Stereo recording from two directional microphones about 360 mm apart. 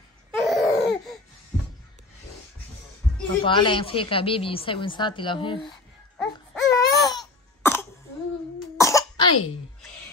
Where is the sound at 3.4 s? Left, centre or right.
Centre.